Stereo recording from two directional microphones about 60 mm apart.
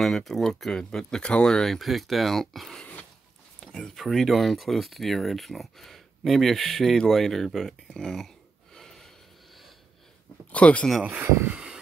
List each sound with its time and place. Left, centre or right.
0.0 s speech: centre
2.8 s a sound: left
3.6 s speech: centre
8.7 s snort: centre
10.5 s speech: left